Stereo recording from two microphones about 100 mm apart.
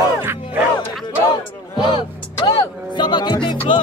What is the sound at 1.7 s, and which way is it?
Speech, 55° left (ahead or behind).